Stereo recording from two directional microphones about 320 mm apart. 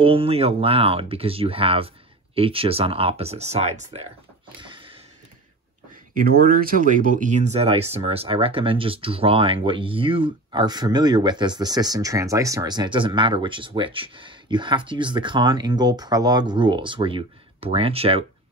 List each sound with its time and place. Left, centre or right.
0.0 s speech: centre
4.6 s a sound: centre
6.1 s speech: right